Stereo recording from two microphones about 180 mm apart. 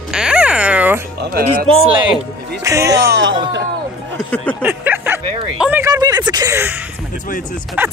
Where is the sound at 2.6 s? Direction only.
15° right (ahead or behind).